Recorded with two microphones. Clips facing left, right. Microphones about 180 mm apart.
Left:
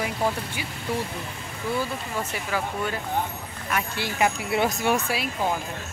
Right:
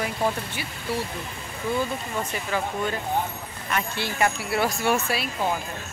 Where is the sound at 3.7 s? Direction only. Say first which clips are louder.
Even; 10° left (ahead or behind).